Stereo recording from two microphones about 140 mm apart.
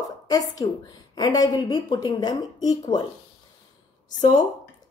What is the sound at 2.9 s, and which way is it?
Speech, 65° left (ahead or behind).